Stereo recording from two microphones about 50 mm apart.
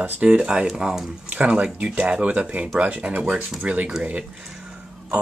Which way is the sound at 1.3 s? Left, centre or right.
Right.